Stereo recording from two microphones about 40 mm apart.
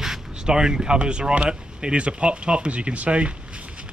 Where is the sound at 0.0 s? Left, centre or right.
Centre.